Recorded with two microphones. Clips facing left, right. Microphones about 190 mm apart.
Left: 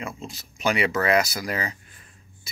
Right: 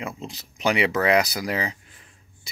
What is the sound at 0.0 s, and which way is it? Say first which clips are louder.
Speech: right 1 dB; 15° right (ahead or behind).